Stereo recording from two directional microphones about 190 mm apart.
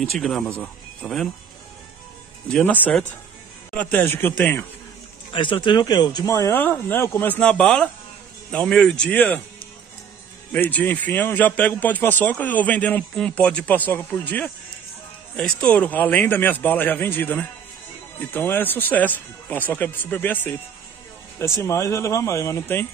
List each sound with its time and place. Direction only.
0.0 s speech: centre (ahead or behind)
2.4 s a man's voice: 10° left (ahead or behind)
5.3 s a man's voice: 25° left (ahead or behind); by 9.4 s 10° left (ahead or behind)
10.5 s a man's voice: 5° left (ahead or behind)